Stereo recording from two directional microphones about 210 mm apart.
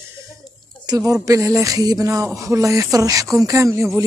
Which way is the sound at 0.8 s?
15° right (ahead or behind).